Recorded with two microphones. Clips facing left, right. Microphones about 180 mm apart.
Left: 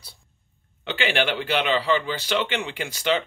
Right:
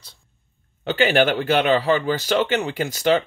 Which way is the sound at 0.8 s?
45° right (ahead or behind).